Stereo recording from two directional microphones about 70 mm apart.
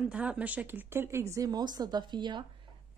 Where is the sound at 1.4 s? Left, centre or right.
Right.